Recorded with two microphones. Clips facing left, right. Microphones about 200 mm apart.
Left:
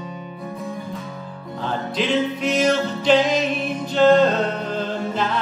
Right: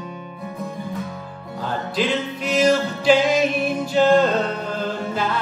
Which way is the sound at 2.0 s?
5° right (ahead or behind).